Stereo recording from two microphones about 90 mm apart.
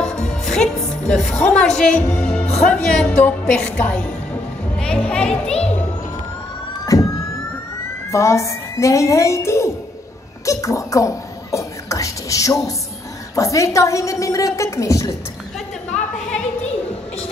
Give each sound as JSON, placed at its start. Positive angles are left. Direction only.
{"t": 0.0, "sound": "music", "side_deg": 10}
{"t": 2.2, "sound": "a woman's voice", "side_deg": 15}
{"t": 6.9, "sound": "vehicle", "side_deg": 40}
{"t": 8.1, "sound": "a woman's voice", "side_deg": 35}
{"t": 10.4, "sound": "a sound", "side_deg": 35}
{"t": 13.4, "sound": "a woman's voice", "side_deg": 35}